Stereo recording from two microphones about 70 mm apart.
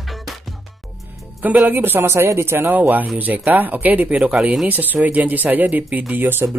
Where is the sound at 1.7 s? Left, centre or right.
Right.